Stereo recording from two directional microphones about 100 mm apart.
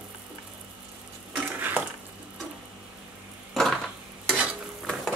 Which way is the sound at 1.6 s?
20° right (ahead or behind).